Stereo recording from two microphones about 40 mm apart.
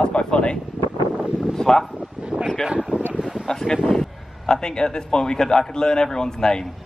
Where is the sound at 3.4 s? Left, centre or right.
Centre.